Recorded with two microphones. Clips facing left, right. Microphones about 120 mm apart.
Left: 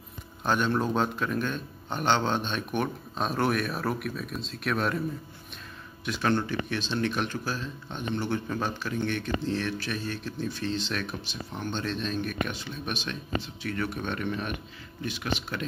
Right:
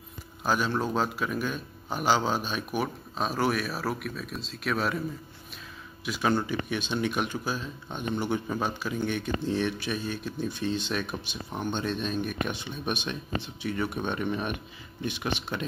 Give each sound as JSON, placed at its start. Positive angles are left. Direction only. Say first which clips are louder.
{"t": 0.4, "sound": "a man's voice", "louder": "left 1 dB", "side_deg": -5}
{"t": 6.0, "sound": "speech", "louder": "even", "side_deg": -10}